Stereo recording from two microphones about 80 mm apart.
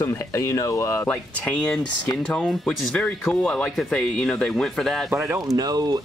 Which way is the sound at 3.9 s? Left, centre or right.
Centre.